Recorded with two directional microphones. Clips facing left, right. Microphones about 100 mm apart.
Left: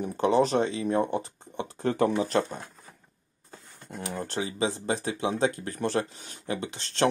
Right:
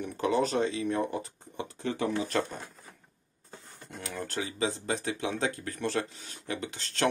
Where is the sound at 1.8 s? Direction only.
50° left (ahead or behind).